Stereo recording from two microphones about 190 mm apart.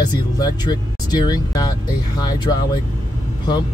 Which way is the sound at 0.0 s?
20° left (ahead or behind).